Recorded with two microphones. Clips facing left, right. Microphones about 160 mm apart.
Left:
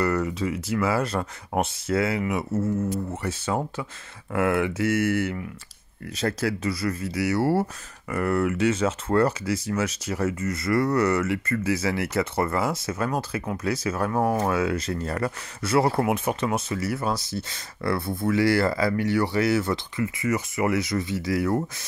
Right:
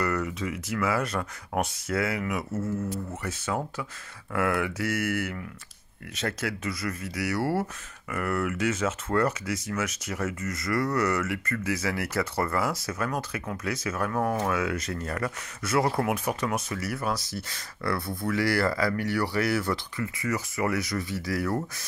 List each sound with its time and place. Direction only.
0.0 s speech: 30° left (ahead or behind)